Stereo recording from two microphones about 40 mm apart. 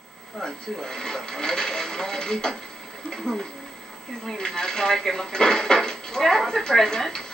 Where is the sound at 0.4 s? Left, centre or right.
Centre.